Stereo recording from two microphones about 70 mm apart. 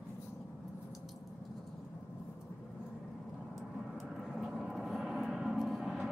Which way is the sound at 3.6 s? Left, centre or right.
Centre.